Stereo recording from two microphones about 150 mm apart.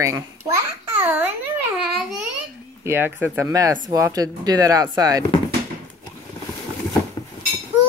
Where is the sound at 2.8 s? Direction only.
15° right (ahead or behind).